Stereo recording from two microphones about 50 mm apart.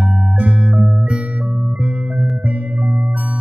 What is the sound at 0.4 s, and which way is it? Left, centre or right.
Music, right.